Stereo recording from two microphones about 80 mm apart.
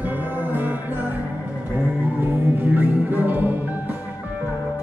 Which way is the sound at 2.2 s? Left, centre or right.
Right.